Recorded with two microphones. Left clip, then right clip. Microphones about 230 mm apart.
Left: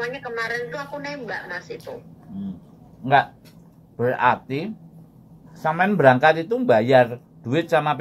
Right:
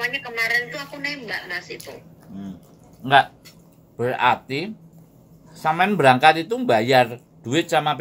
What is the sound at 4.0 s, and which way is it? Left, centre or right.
Speech, centre.